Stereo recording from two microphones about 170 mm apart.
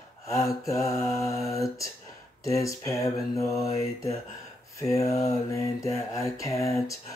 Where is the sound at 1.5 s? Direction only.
20° left (ahead or behind).